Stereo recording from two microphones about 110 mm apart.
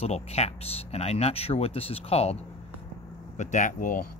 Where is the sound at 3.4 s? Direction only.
90° left.